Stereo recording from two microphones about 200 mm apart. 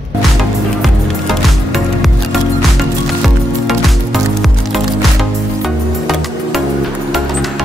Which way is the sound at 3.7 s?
Centre (ahead or behind).